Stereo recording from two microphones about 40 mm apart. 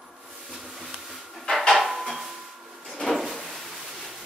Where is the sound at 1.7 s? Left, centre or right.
Centre.